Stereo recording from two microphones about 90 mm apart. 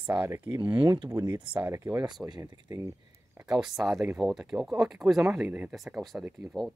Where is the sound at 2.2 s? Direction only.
50° right (ahead or behind).